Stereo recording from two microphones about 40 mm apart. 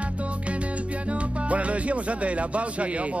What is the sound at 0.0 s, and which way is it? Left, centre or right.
Music, right.